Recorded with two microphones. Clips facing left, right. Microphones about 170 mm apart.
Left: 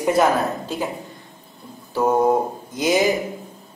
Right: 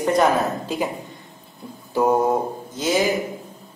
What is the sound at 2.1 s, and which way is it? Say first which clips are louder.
Mantra: left 4 dB; 10° left (ahead or behind).